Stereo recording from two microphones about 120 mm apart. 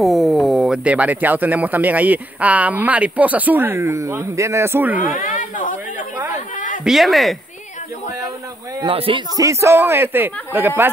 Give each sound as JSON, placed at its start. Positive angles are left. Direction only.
{"t": 0.0, "sound": "speech", "side_deg": 0}
{"t": 5.1, "sound": "a sound", "side_deg": 90}
{"t": 6.8, "sound": "speech", "side_deg": 0}
{"t": 8.8, "sound": "speech", "side_deg": -45}
{"t": 9.4, "sound": "a man's voice", "side_deg": -25}